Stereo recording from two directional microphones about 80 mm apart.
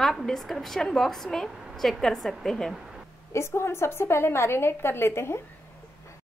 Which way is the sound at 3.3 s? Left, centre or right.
Left.